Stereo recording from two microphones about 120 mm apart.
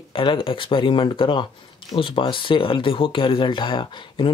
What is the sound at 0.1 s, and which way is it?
Speech, 45° left (ahead or behind).